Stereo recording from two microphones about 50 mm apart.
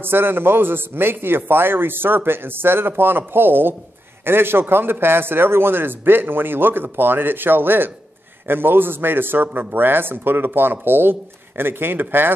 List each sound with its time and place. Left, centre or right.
0.0 s a man's voice: right